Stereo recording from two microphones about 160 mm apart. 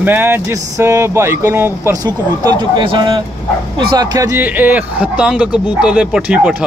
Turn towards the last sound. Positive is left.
turn(degrees=-10)  # may be behind; listen again after turning